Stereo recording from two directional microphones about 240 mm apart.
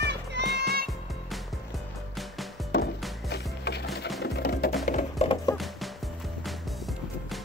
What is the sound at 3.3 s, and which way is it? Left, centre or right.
Wood, left.